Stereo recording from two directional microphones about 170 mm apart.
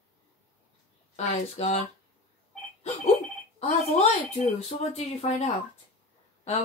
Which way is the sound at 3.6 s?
40° left (ahead or behind).